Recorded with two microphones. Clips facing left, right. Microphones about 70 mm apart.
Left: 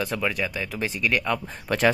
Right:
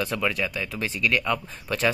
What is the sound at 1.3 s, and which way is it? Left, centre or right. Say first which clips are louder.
Speech: left 1 dB; left.